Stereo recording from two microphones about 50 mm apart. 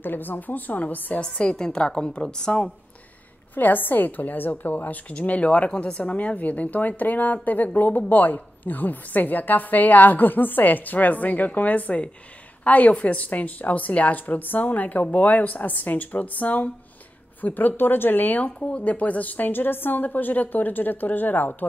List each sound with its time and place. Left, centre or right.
0.0 s a woman's voice: left
1.2 s a woman's voice: centre
3.5 s a woman's voice: left
18.7 s a woman's voice: left